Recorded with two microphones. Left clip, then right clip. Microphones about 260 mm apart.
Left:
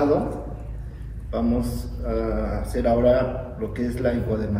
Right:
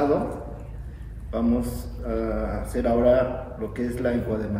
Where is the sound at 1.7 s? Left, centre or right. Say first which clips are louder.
Left 2 dB; centre.